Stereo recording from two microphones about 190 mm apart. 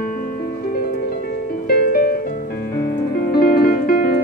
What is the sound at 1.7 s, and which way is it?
Music, 50° left (ahead or behind).